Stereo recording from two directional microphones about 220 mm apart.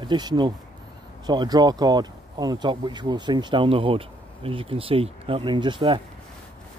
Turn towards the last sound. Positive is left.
turn(degrees=-20)  # may be behind; listen again after turning